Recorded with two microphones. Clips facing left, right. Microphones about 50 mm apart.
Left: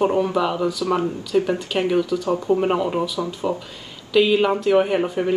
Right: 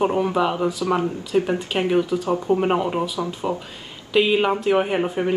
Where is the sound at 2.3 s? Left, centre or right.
Centre.